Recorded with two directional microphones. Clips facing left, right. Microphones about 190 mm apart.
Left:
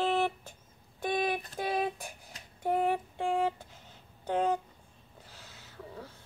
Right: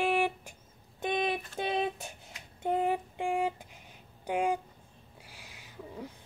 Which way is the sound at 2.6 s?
15° right (ahead or behind).